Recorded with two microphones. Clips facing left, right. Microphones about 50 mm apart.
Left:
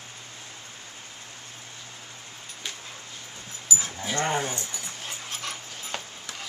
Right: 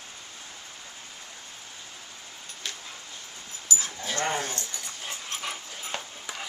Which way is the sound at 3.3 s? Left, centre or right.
Centre.